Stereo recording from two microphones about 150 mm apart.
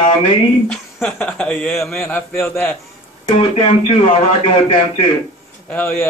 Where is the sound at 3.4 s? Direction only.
40° left (ahead or behind).